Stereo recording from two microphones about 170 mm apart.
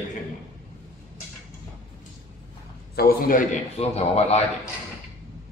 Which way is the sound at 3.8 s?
40° left (ahead or behind).